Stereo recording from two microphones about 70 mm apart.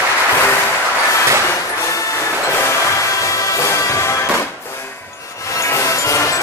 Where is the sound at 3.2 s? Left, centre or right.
Left.